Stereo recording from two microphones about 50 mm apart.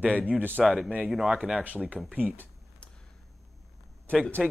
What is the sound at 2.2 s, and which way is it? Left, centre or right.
Speech, right.